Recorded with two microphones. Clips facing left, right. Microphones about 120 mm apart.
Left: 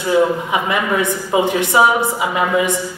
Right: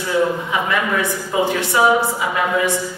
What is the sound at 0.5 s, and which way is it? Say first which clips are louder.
A woman's voice: left 2 dB; 20° left (ahead or behind).